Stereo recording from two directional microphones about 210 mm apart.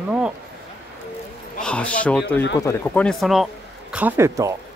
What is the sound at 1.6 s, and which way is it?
Speech, 5° left (ahead or behind).